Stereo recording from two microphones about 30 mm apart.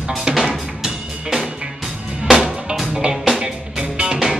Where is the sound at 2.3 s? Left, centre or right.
Right.